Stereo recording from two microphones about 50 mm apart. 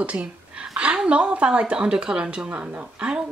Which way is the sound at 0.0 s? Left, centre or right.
Right.